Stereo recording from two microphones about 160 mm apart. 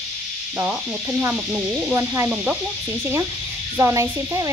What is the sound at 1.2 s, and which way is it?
Insect, 15° right (ahead or behind).